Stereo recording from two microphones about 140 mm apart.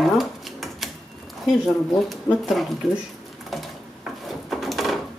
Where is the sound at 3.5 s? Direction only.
Centre (ahead or behind).